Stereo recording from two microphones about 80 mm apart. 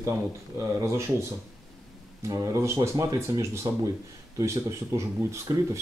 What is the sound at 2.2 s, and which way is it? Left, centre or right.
Speech, right.